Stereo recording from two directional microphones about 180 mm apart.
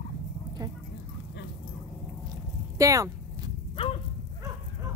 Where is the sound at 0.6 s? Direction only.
20° right (ahead or behind).